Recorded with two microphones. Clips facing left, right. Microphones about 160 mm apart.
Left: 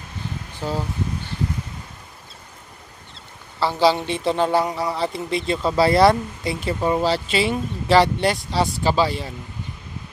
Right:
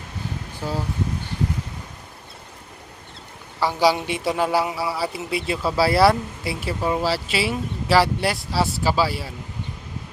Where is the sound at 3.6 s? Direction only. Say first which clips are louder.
Left 1 dB; 10° right (ahead or behind).